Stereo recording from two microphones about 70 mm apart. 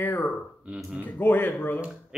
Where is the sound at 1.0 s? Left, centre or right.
Left.